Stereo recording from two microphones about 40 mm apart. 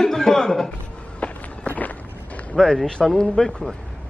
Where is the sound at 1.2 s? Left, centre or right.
Left.